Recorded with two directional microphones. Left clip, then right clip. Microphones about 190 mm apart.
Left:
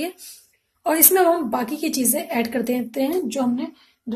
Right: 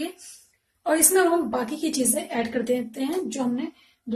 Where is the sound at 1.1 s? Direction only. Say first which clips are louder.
Left 3 dB; 45° left (ahead or behind).